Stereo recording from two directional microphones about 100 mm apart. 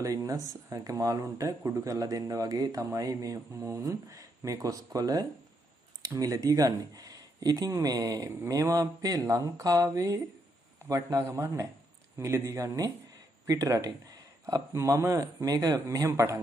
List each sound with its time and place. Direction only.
0.0 s speech: 35° right (ahead or behind)